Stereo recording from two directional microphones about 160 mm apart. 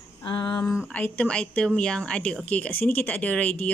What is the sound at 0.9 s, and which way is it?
A woman's voice, 10° left (ahead or behind).